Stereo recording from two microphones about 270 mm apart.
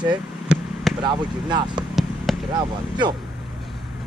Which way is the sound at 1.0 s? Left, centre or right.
Centre.